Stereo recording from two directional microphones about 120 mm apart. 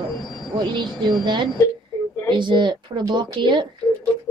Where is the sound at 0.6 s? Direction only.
40° right (ahead or behind).